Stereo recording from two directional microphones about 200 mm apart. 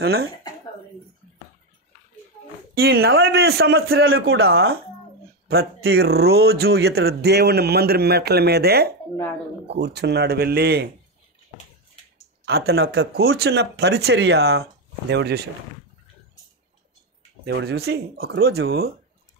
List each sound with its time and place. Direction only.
0.0 s speech: 50° right (ahead or behind)
2.7 s speech: 50° right (ahead or behind)
5.5 s speech: 50° right (ahead or behind)
12.4 s speech: 50° right (ahead or behind)
17.5 s speech: 55° right (ahead or behind)